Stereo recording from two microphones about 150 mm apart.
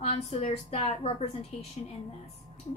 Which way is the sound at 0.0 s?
45° left (ahead or behind).